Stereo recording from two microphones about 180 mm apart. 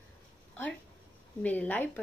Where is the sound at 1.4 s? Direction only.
10° left (ahead or behind).